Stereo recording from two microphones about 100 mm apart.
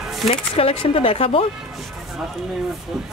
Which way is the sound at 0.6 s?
75° left (ahead or behind).